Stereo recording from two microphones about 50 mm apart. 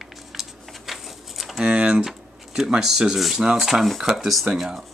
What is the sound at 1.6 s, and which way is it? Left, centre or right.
Speech, right.